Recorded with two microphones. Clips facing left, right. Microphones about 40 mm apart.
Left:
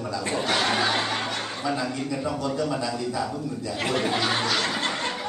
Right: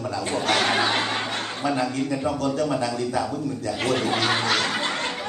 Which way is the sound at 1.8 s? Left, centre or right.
Right.